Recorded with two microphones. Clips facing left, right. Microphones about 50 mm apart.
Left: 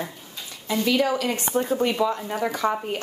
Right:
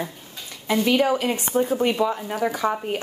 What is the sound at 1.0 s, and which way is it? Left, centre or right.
Speech, centre.